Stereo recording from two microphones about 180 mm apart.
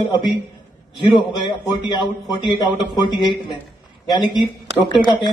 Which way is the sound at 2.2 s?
Centre (ahead or behind).